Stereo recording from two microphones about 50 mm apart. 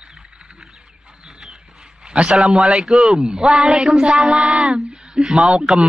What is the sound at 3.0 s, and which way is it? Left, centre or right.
Speech, centre.